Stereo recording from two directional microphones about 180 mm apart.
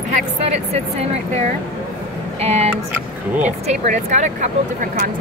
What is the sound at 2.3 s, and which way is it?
Speech, 35° right (ahead or behind).